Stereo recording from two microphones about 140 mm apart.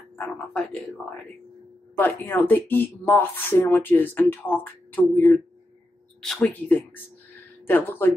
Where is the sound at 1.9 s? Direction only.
15° left (ahead or behind).